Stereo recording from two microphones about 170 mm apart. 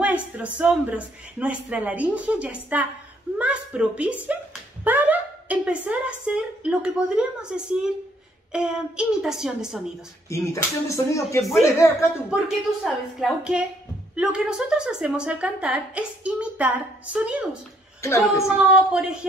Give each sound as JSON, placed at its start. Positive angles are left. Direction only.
{"t": 0.4, "sound": "a woman's voice", "side_deg": -10}
{"t": 10.3, "sound": "speech", "side_deg": 15}
{"t": 12.3, "sound": "a woman's voice", "side_deg": -5}
{"t": 18.0, "sound": "speech", "side_deg": 15}
{"t": 18.7, "sound": "a woman's voice", "side_deg": -5}